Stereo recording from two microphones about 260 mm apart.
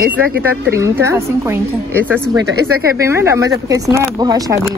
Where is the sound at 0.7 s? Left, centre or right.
Centre.